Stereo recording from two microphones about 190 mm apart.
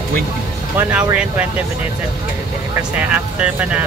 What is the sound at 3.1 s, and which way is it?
Speech, 5° right (ahead or behind).